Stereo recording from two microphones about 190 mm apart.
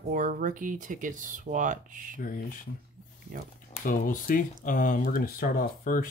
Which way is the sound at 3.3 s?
50° right (ahead or behind).